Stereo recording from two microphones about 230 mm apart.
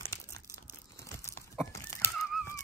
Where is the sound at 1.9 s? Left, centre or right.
Centre.